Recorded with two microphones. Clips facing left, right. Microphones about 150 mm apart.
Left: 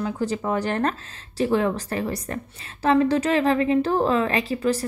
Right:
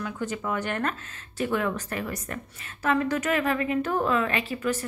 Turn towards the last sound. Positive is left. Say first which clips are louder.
# left 5 dB
turn(degrees=35)  # may be behind; listen again after turning